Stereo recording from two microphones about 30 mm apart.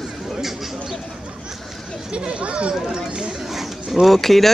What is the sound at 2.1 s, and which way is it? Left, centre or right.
Speech, right.